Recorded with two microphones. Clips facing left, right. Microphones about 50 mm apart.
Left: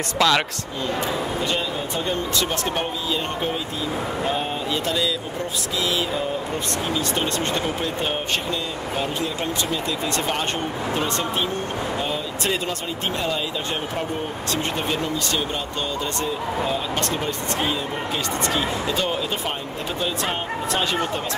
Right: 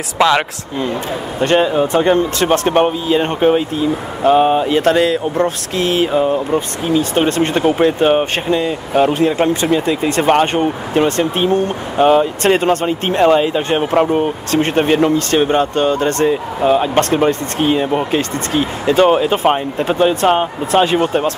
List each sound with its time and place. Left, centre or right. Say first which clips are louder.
0.2 s speech: right 7 dB; right
1.4 s speech: right 12 dB; right
6.9 s speech: right 12 dB; right
11.0 s speech: right 11 dB; right
21.0 s speech: right 10 dB; right